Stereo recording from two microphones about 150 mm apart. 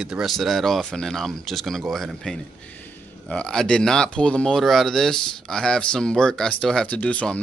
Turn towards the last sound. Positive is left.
turn(degrees=10)  # may be behind; listen again after turning